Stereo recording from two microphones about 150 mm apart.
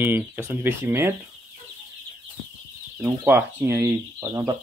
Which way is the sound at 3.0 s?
15° right (ahead or behind).